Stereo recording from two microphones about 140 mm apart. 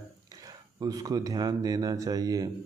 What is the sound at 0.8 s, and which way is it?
Speech, 25° right (ahead or behind).